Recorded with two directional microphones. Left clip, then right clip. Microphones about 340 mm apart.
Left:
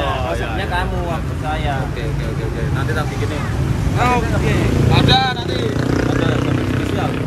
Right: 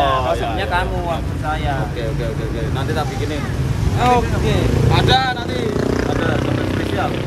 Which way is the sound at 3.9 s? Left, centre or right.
Centre.